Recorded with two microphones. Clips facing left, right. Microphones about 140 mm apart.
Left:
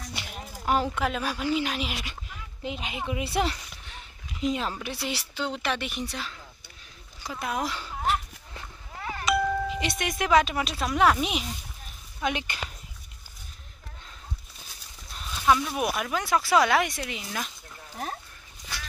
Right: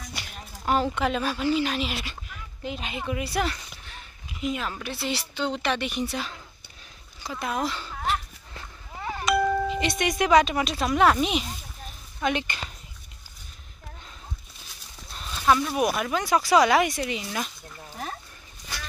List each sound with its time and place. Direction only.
0.1 s a sound: 20° left (ahead or behind)
0.8 s speech: 5° left (ahead or behind)
3.3 s speech: 25° left (ahead or behind)
4.7 s speech: 15° left (ahead or behind)
7.2 s horse: 10° left (ahead or behind)
8.9 s a sound: 15° right (ahead or behind)
9.2 s speech: 5° left (ahead or behind)
15.1 s speech: centre (ahead or behind)